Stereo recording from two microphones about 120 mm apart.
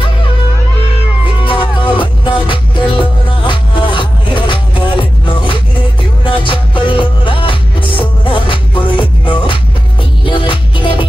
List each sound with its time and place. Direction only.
1.2 s music: 45° left (ahead or behind)